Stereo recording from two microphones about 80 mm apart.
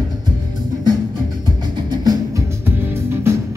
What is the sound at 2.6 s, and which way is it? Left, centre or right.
Music, right.